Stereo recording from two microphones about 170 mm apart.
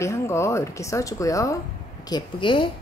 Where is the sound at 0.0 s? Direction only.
15° left (ahead or behind).